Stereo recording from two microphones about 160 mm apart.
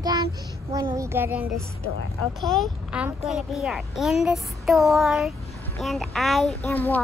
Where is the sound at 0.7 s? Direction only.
20° right (ahead or behind).